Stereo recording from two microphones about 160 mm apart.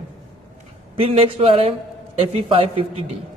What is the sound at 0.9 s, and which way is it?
A man's voice, 35° right (ahead or behind).